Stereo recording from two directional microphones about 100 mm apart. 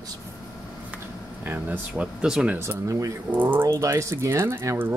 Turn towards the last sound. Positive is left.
turn(degrees=-25)  # may be behind; listen again after turning